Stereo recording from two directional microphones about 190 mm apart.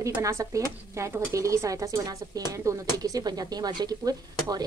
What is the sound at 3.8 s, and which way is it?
Stir, 20° right (ahead or behind).